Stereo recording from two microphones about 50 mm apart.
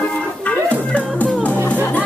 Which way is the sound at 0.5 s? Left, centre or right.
Left.